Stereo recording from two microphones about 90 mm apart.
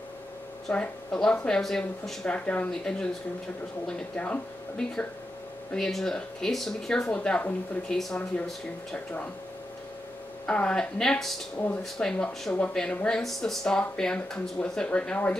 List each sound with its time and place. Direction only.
0.7 s speech: 10° left (ahead or behind)
10.4 s speech: 10° left (ahead or behind)
11.5 s speech: 20° left (ahead or behind)
11.8 s speech: 10° left (ahead or behind)